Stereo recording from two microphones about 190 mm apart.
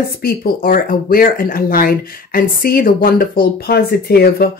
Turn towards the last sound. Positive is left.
turn(degrees=50)  # may be behind; listen again after turning